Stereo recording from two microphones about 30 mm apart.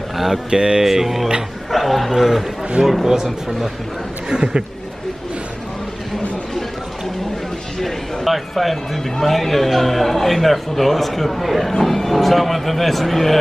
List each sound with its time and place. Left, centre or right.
0.5 s speech: right
0.8 s speech: centre
2.1 s a man's voice: centre
4.3 s speech: right
7.8 s a man's voice: centre